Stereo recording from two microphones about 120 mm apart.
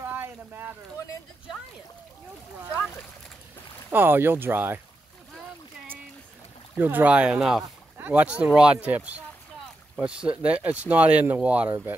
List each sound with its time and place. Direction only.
0.0 s boat: 15° right (ahead or behind)
3.9 s speech: 20° right (ahead or behind)
6.8 s speech: 15° right (ahead or behind)